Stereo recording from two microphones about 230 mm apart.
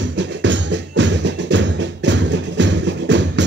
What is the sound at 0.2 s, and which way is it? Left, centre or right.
Music, right.